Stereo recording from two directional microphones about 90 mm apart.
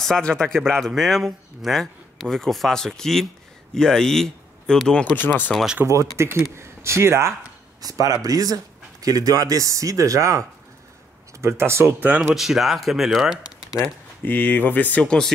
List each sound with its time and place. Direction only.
0.0 s speech: 5° left (ahead or behind)
5.1 s speech: 20° left (ahead or behind)
5.5 s speech: centre (ahead or behind)
5.9 s speech: 30° right (ahead or behind)
7.8 s speech: 40° right (ahead or behind)
11.4 s speech: 30° right (ahead or behind)
12.4 s speech: centre (ahead or behind)
14.2 s speech: 20° left (ahead or behind)